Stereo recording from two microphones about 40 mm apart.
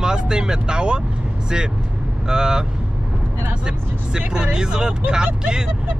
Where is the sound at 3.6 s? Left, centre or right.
Right.